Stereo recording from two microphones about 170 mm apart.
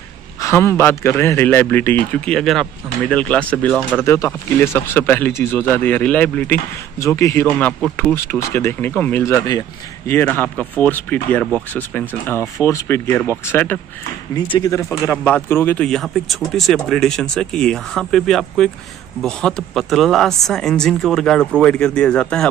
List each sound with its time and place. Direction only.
0.4 s speech: 15° left (ahead or behind)
4.0 s speech: 15° left (ahead or behind)